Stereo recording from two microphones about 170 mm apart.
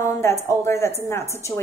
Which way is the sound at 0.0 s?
15° left (ahead or behind).